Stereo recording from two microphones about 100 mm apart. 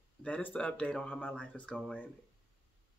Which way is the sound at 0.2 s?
15° left (ahead or behind).